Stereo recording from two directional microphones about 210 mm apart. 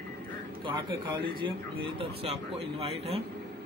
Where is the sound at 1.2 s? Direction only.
25° right (ahead or behind).